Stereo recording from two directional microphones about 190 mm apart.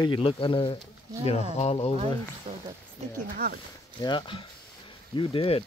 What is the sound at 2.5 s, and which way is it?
Speech, 30° right (ahead or behind).